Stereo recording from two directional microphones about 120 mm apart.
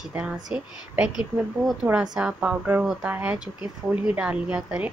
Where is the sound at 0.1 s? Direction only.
10° right (ahead or behind).